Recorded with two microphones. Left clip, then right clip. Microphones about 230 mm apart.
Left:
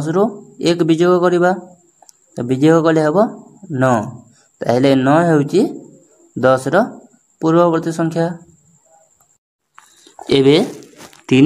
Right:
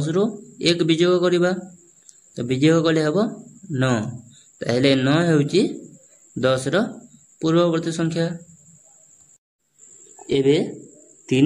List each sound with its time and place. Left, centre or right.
0.0 s a man's voice: centre
10.2 s speech: centre